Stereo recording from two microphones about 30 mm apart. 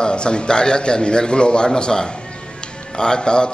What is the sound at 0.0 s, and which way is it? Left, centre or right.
A man's voice, left.